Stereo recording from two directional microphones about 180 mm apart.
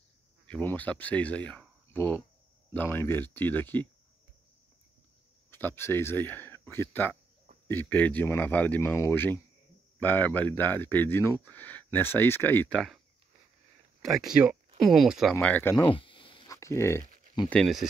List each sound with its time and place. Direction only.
0.5 s speech: 10° left (ahead or behind)
5.5 s speech: 10° left (ahead or behind)
14.0 s speech: centre (ahead or behind)
15.3 s speech: 10° left (ahead or behind)
15.8 s a sound: 30° left (ahead or behind)
16.5 s a sound: 15° left (ahead or behind)
17.6 s speech: centre (ahead or behind)